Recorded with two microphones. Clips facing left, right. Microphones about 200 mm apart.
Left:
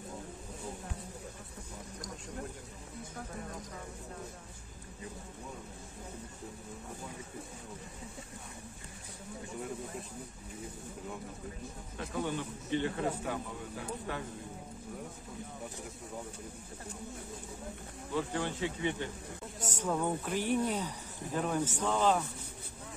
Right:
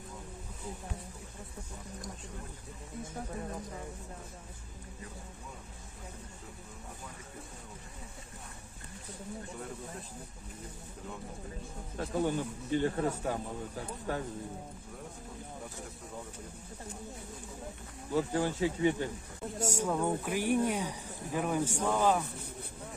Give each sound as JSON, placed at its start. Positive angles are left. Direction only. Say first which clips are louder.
{"t": 12.0, "sound": "speech", "louder": "right 4 dB", "side_deg": -40}
{"t": 18.1, "sound": "speech", "louder": "right 4 dB", "side_deg": -40}
{"t": 19.6, "sound": "speech", "louder": "right 2 dB", "side_deg": -10}